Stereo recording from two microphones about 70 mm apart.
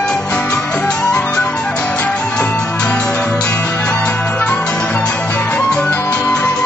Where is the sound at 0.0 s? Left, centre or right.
Centre.